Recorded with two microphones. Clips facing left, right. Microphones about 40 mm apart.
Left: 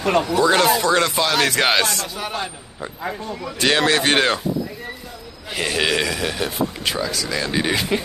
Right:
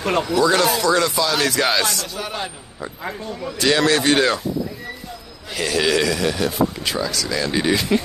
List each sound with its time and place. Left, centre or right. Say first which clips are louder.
0.2 s a man's voice: right 2 dB; left
2.1 s a man's voice: left 1 dB; centre
3.5 s a man's voice: even; left
5.5 s speech: right 1 dB; centre